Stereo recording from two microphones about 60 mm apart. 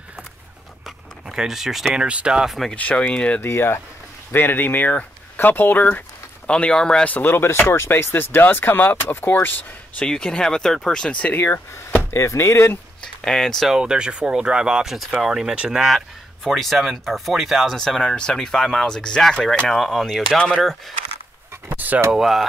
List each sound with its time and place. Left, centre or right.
0.8 s a sound: centre
2.0 s speech: centre
2.7 s speech: left
3.3 s speech: left
6.4 s speech: centre
7.2 s speech: left
10.0 s speech: centre
11.3 s speech: left
12.1 s speech: left
13.0 s speech: centre
13.7 s speech: centre
17.7 s speech: centre
21.6 s speech: right
22.1 s speech: centre